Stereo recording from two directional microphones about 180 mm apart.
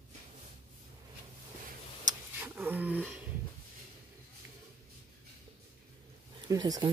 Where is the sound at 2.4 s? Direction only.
10° right (ahead or behind).